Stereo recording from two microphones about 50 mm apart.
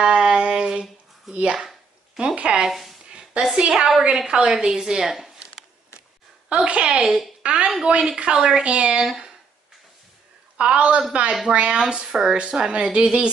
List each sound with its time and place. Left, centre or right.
0.0 s a sound: centre
1.3 s a woman's voice: right
2.6 s speech: centre
3.1 s a sound: centre
3.5 s a woman's voice: centre
5.1 s a sound: centre
6.5 s a woman's voice: right
9.0 s speech: centre
10.6 s a woman's voice: right